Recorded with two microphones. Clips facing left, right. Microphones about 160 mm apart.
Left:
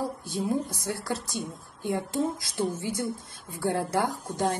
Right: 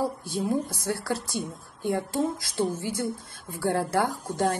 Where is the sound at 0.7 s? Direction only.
20° left (ahead or behind).